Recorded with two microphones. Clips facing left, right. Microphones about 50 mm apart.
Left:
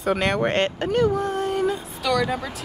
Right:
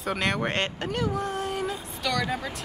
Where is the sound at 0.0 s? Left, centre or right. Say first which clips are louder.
Left 5 dB; centre.